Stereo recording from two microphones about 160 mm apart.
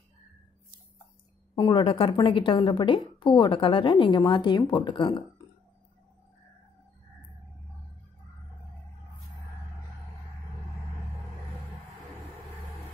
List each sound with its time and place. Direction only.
1.5 s a woman's voice: 25° left (ahead or behind)